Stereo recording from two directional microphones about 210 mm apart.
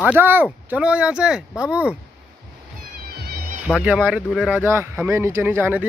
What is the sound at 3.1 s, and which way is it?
Insect, 50° right (ahead or behind).